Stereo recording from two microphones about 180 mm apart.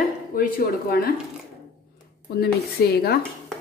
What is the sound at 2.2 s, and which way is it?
Speech, 60° left (ahead or behind).